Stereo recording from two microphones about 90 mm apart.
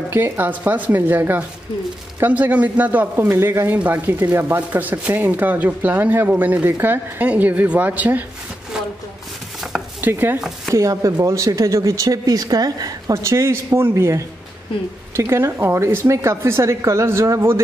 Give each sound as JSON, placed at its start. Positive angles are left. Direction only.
{"t": 0.1, "sound": "a man's voice", "side_deg": -20}
{"t": 9.6, "sound": "chopping", "side_deg": -5}
{"t": 10.0, "sound": "a man's voice", "side_deg": -20}
{"t": 10.7, "sound": "speech", "side_deg": -40}
{"t": 13.1, "sound": "speech", "side_deg": -35}